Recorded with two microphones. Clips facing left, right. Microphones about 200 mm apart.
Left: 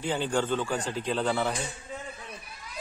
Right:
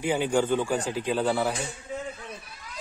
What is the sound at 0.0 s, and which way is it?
Speech, 10° right (ahead or behind).